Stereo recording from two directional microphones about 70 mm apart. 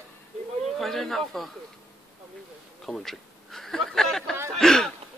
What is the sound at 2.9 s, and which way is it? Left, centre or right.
Speech, centre.